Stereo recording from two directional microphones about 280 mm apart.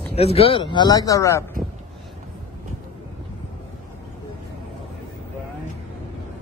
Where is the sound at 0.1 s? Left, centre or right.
Left.